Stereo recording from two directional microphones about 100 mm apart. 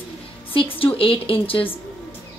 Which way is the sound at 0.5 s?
60° left (ahead or behind).